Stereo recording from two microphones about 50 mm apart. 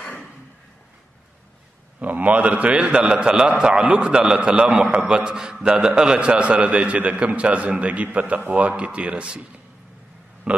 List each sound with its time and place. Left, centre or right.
2.0 s a man's voice: right